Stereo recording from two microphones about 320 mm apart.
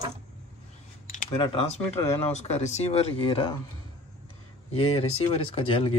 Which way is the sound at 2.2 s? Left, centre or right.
Left.